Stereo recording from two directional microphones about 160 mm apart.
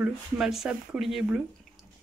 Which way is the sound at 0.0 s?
5° right (ahead or behind).